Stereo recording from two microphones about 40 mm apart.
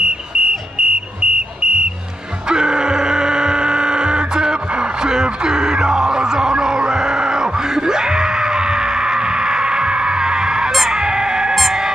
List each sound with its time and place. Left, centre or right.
0.0 s a sound: right
10.7 s chicken: centre
11.0 s chicken: centre
11.5 s music: centre